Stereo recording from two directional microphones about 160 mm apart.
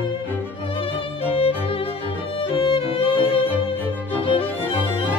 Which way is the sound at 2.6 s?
35° left (ahead or behind).